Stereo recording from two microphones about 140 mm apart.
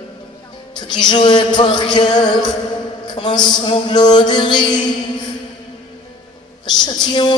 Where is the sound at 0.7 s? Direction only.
30° left (ahead or behind).